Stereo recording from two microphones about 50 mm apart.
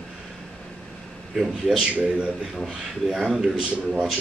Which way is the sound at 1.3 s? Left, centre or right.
Centre.